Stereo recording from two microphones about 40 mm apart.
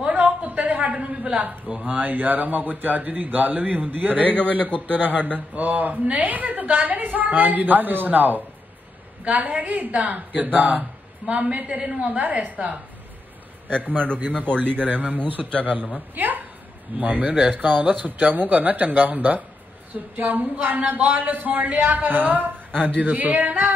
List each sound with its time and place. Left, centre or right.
0.1 s a sound: right
1.9 s a man's voice: right
14.9 s a man's voice: right
17.3 s a woman's voice: right
17.6 s a man's voice: right
22.8 s a man's voice: right